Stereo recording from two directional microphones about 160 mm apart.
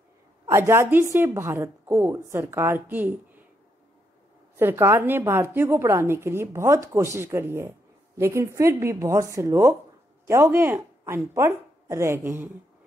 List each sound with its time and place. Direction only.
0.5 s a woman's voice: 15° right (ahead or behind)
4.6 s a woman's voice: 15° right (ahead or behind)